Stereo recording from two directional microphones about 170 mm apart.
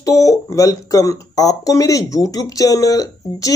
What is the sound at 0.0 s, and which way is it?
Speech, 20° left (ahead or behind).